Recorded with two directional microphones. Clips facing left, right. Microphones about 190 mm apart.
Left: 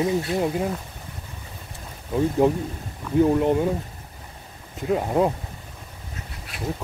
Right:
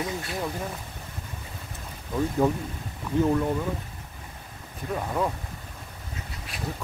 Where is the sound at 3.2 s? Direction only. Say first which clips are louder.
Left 4 dB; 20° left (ahead or behind).